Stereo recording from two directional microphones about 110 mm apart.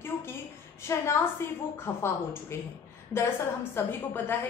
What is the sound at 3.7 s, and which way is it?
Speech, 20° left (ahead or behind).